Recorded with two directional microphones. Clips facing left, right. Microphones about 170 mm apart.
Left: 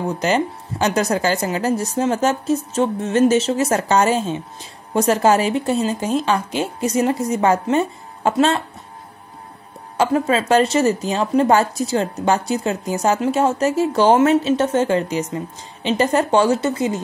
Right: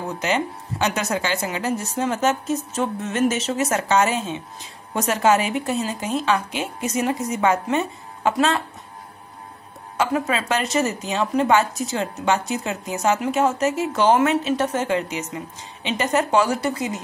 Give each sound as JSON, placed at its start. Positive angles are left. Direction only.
{"t": 0.2, "sound": "a woman's voice", "side_deg": 35}
{"t": 9.9, "sound": "a woman's voice", "side_deg": 30}